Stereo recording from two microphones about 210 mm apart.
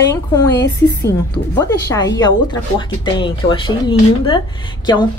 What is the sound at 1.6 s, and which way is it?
A woman's voice, 20° left (ahead or behind).